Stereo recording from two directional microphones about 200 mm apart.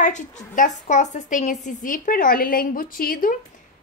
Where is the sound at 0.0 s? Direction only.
35° left (ahead or behind).